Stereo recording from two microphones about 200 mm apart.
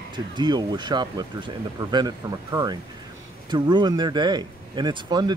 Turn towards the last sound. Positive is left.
turn(degrees=-20)  # may be behind; listen again after turning